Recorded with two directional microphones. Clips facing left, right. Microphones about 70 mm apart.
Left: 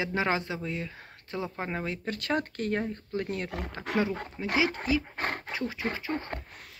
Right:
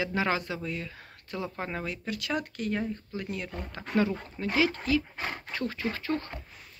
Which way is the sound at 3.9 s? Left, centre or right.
Left.